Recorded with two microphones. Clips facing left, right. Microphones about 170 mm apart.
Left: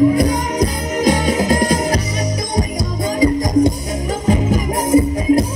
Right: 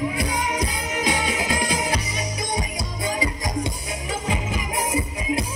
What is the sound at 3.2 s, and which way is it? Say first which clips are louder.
Music: left 13 dB; 40° left (ahead or behind).